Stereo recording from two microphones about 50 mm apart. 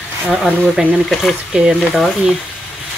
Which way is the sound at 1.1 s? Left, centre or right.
Centre.